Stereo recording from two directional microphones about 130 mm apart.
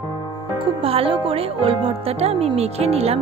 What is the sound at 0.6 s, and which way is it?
Speech, 45° right (ahead or behind).